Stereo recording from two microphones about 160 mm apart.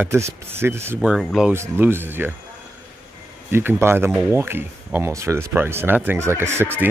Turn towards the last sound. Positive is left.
turn(degrees=-15)  # may be behind; listen again after turning